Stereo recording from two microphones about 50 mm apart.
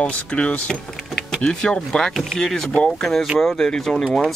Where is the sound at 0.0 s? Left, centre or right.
Left.